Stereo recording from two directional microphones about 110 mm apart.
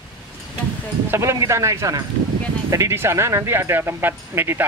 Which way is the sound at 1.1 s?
25° right (ahead or behind).